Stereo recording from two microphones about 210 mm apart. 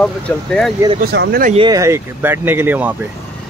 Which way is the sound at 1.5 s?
20° right (ahead or behind).